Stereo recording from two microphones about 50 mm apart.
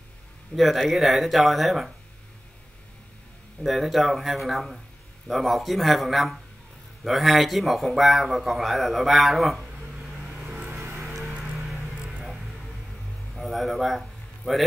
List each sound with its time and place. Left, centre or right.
0.6 s a man's voice: centre
3.6 s a man's voice: centre
10.4 s vehicle: right
11.5 s music: centre
13.3 s a sound: centre